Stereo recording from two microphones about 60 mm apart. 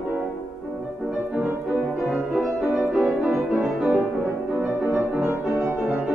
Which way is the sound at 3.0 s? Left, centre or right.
Right.